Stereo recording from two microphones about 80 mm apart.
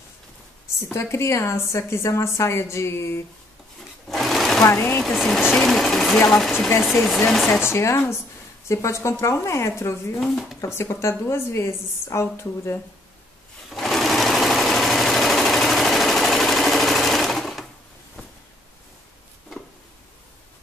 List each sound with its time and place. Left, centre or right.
0.9 s a woman's voice: left
4.1 s sewing machine: centre
4.6 s speech: left
5.0 s speech: centre
7.6 s a woman's voice: left
10.2 s speech: centre
10.6 s a woman's voice: left
13.7 s sewing machine: centre